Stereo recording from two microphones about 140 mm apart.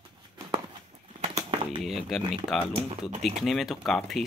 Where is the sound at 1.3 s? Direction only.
40° right (ahead or behind).